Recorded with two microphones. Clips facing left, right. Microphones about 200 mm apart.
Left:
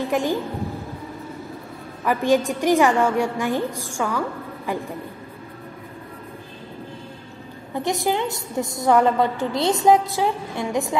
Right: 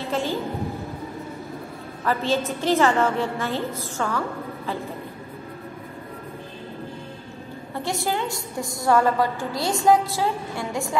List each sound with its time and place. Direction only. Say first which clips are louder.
0.0 s a woman's voice: left 4 dB; 15° left (ahead or behind)
2.0 s a woman's voice: left 4 dB; 15° left (ahead or behind)
7.7 s a woman's voice: left 4 dB; 20° left (ahead or behind)